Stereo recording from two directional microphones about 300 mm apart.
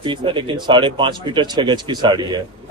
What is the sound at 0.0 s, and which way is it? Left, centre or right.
A man's voice, centre.